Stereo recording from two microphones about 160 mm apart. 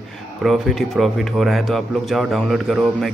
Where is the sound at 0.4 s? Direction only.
Centre (ahead or behind).